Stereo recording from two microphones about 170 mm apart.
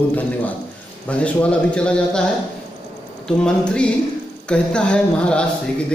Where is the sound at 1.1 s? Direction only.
5° left (ahead or behind).